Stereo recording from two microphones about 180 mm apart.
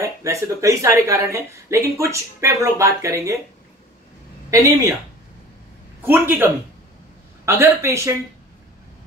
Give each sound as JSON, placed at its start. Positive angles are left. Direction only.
{"t": 0.0, "sound": "speech", "side_deg": -15}
{"t": 4.5, "sound": "speech", "side_deg": -15}
{"t": 6.0, "sound": "speech", "side_deg": -10}